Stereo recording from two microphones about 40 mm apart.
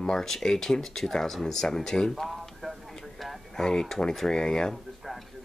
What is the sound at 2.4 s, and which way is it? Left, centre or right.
Clip-clop, centre.